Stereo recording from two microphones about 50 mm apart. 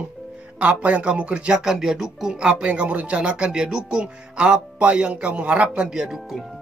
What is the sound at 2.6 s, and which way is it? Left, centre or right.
Speech, right.